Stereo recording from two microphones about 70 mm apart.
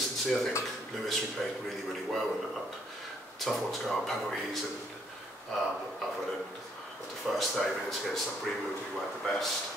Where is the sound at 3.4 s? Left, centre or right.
Centre.